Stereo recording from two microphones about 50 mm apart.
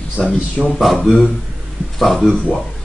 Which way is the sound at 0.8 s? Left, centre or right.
Centre.